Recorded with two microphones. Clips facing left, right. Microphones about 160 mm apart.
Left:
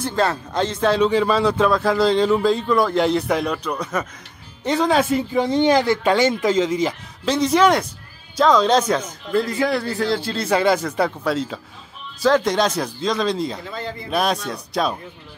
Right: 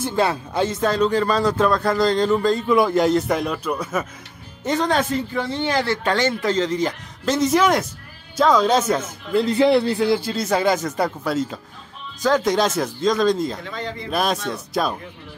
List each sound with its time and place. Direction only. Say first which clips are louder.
0.1 s a man's voice: even; 10° right (ahead or behind)
9.3 s a man's voice: right 4 dB; 20° right (ahead or behind)
10.3 s a man's voice: left 1 dB; centre (ahead or behind)